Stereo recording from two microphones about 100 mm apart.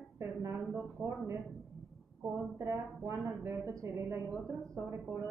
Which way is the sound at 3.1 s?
30° right (ahead or behind).